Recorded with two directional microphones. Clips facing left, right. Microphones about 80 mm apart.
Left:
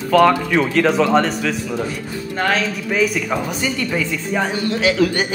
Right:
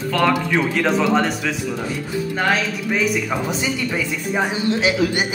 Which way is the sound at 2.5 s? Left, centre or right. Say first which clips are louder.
Left 1 dB; centre.